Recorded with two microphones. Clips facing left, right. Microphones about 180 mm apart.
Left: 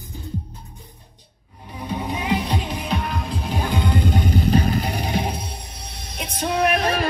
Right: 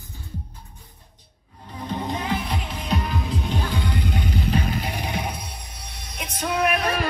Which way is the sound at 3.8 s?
45° left (ahead or behind).